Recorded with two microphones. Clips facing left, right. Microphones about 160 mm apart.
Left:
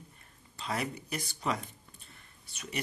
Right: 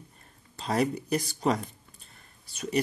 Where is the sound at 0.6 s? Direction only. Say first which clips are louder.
Right 8 dB; 40° right (ahead or behind).